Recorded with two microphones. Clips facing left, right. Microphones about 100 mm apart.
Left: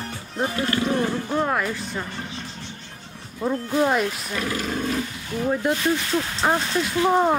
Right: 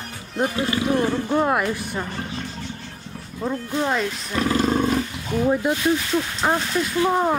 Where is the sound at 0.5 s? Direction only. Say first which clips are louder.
Even; 15° right (ahead or behind).